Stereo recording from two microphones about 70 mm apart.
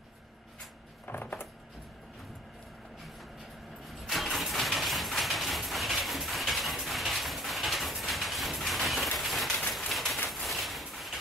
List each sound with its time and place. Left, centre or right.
1.0 s mechanisms: left
4.0 s vehicle: centre
10.3 s a sound: centre